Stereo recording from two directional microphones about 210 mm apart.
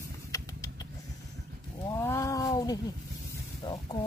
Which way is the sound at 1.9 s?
15° left (ahead or behind).